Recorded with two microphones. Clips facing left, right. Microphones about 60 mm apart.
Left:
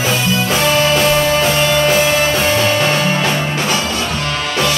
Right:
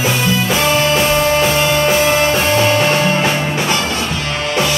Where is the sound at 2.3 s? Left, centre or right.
Centre.